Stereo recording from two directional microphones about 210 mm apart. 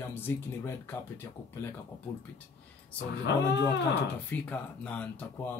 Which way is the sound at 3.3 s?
55° left (ahead or behind).